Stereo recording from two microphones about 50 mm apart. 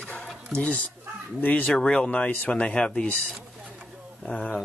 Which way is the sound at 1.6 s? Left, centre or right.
Centre.